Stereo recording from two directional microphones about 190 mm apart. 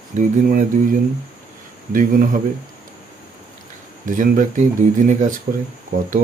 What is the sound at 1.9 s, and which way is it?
Speech, 45° right (ahead or behind).